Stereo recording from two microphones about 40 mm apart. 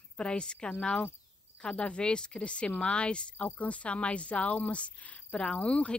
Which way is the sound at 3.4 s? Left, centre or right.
Left.